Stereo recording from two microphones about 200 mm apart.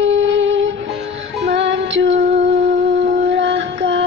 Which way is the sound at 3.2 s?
60° right (ahead or behind).